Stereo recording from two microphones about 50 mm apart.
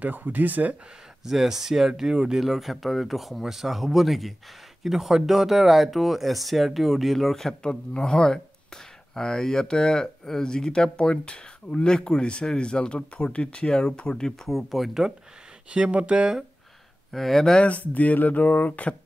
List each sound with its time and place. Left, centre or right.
0.0 s speech: right
1.2 s speech: centre
7.6 s speech: centre
14.5 s speech: centre
15.7 s speech: right
17.1 s speech: centre
17.6 s speech: left